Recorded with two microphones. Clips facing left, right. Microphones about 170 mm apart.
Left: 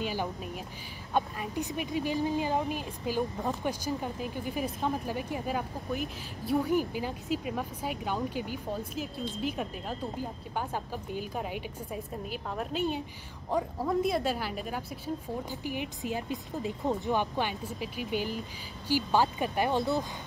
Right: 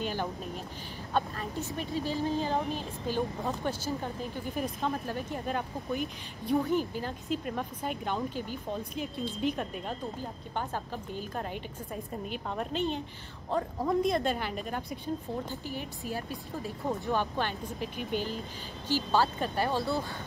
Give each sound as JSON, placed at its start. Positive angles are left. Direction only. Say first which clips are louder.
{"t": 0.0, "sound": "speech", "louder": "even", "side_deg": 10}
{"t": 15.6, "sound": "speech", "louder": "left 3 dB", "side_deg": 15}